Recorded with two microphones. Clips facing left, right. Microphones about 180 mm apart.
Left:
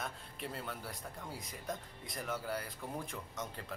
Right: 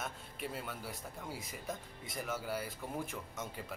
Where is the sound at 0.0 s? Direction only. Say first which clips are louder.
Right 1 dB; centre (ahead or behind).